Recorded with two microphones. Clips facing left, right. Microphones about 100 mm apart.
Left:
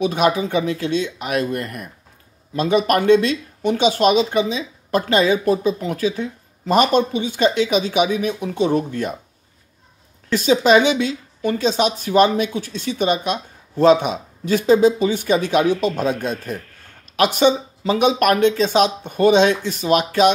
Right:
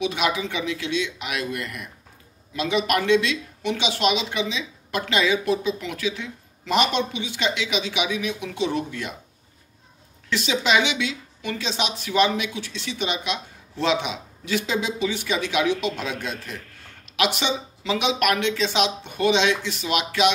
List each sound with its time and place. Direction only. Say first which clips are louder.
0.0 s speech: left 6 dB; 45° left (ahead or behind)
10.3 s speech: left 8 dB; 45° left (ahead or behind)